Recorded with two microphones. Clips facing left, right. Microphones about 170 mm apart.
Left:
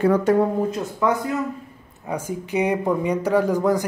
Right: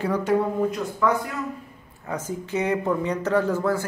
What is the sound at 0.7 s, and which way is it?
Speech, 20° left (ahead or behind).